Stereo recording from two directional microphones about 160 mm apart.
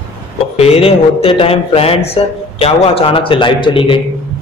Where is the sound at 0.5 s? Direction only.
40° left (ahead or behind).